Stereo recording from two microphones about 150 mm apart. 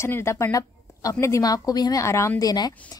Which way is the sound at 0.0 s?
15° left (ahead or behind).